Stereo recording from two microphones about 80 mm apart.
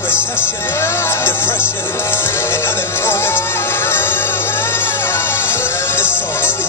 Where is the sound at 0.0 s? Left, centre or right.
Left.